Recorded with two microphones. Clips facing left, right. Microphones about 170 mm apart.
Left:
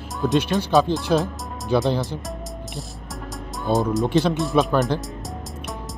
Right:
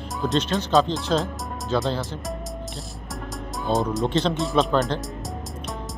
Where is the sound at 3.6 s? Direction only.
Centre (ahead or behind).